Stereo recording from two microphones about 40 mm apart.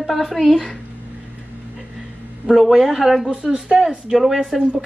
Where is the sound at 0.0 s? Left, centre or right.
Centre.